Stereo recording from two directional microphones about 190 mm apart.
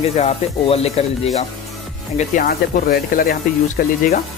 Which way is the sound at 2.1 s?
45° left (ahead or behind).